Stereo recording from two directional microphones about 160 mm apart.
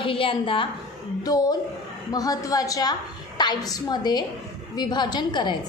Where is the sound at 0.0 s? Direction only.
35° left (ahead or behind).